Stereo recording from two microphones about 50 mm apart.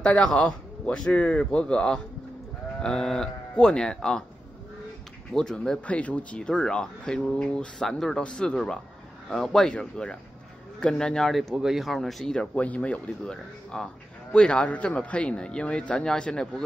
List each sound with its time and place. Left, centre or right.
0.0 s a man's voice: left
5.3 s speech: centre
5.9 s a man's voice: left; by 9.7 s centre
9.7 s a man's voice: centre
11.5 s speech: centre
12.5 s a man's voice: left